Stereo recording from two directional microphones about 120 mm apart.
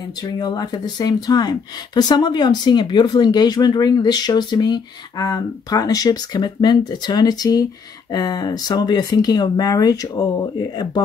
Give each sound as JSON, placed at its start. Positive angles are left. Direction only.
{"t": 0.2, "sound": "speech", "side_deg": 35}